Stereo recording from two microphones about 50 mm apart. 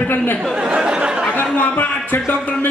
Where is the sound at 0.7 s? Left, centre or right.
Centre.